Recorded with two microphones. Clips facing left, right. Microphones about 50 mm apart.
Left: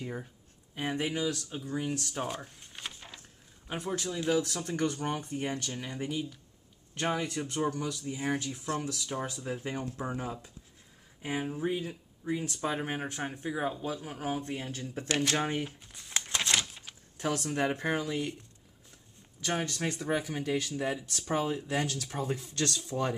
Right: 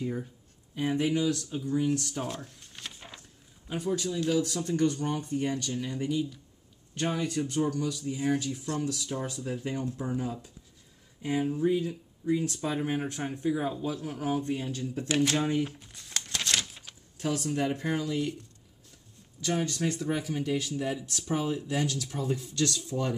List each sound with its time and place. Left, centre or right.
0.0 s speech: centre
0.7 s speech: left
4.2 s speech: left
11.2 s speech: centre; by 15.6 s left
15.8 s a sound: centre
17.2 s speech: left
19.5 s speech: left